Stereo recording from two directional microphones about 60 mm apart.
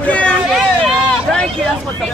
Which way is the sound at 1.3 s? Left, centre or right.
Centre.